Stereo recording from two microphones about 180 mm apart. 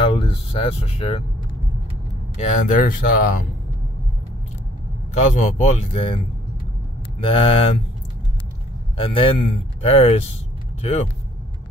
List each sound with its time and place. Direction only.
0.0 s speech: 30° left (ahead or behind)
2.3 s speech: 45° left (ahead or behind)
5.1 s speech: 45° left (ahead or behind)
8.9 s speech: 30° left (ahead or behind)